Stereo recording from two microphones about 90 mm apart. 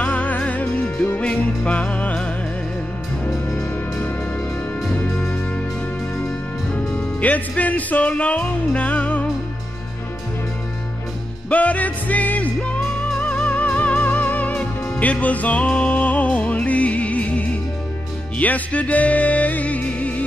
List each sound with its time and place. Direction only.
0.0 s music: 15° left (ahead or behind)
6.7 s music: 15° left (ahead or behind)
11.5 s music: 15° left (ahead or behind)